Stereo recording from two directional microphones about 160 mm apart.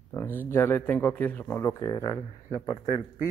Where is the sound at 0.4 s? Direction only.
15° left (ahead or behind).